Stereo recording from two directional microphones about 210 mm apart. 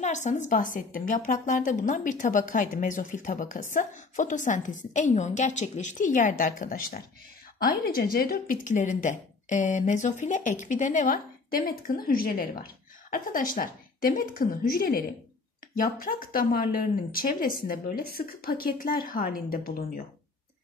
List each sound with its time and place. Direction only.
0.0 s a woman's voice: 35° left (ahead or behind)